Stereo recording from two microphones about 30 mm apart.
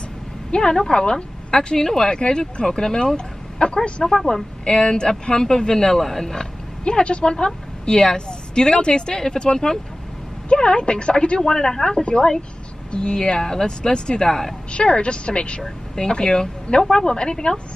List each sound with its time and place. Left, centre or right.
0.5 s a woman's voice: left
2.1 s a woman's voice: left
5.9 s speech: centre
6.9 s a woman's voice: left
11.4 s a woman's voice: left
12.0 s a woman's voice: left
13.2 s a woman's voice: left
13.9 s a woman's voice: left
14.2 s speech: centre
14.7 s a woman's voice: left